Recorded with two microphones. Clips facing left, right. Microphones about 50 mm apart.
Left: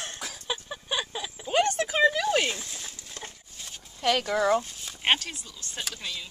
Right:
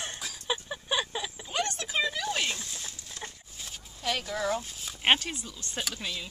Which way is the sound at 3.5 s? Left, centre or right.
Centre.